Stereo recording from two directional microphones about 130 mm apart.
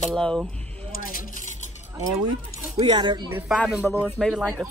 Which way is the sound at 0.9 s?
90° left.